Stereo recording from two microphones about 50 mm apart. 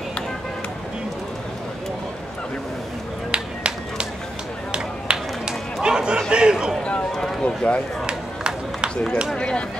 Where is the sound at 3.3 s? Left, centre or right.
Centre.